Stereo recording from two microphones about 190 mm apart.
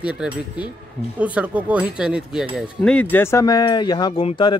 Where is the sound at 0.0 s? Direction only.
5° right (ahead or behind).